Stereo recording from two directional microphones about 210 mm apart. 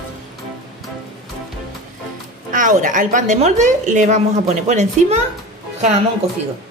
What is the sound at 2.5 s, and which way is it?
A woman's voice, 40° right (ahead or behind).